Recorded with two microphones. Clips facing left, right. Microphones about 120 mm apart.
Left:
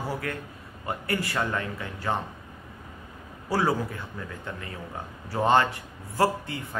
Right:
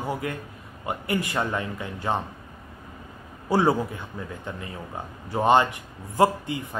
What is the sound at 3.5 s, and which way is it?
A man's voice, 20° right (ahead or behind).